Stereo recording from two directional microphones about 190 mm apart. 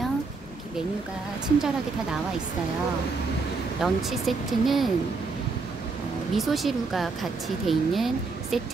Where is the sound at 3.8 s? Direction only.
Centre (ahead or behind).